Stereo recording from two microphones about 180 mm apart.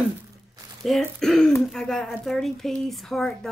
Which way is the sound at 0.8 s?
Centre (ahead or behind).